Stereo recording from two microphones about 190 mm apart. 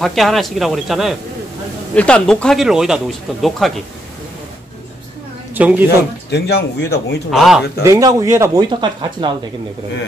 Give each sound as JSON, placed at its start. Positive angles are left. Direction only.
{"t": 0.0, "sound": "speech", "side_deg": 0}
{"t": 5.5, "sound": "a man's voice", "side_deg": -10}
{"t": 6.3, "sound": "a man's voice", "side_deg": 60}
{"t": 7.2, "sound": "speech", "side_deg": 0}
{"t": 7.8, "sound": "speech", "side_deg": -20}